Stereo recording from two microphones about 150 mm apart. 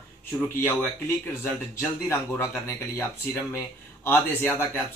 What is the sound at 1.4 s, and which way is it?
Speech, 15° left (ahead or behind).